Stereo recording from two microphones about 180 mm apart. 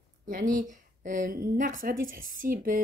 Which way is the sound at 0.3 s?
50° right (ahead or behind).